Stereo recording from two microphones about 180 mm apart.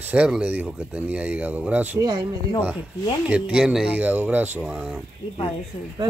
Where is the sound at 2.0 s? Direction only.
25° right (ahead or behind).